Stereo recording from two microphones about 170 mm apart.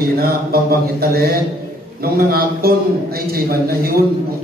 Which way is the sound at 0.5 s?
65° right (ahead or behind).